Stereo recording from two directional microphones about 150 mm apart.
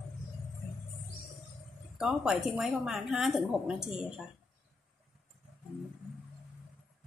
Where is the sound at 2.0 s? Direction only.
5° right (ahead or behind).